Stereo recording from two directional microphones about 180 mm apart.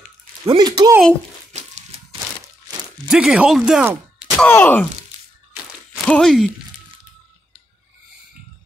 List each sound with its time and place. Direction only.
0.5 s speech: 25° right (ahead or behind)
1.5 s a sound: 40° right (ahead or behind)
3.1 s speech: 5° right (ahead or behind)
4.4 s speech: 10° left (ahead or behind)
6.0 s speech: 5° left (ahead or behind)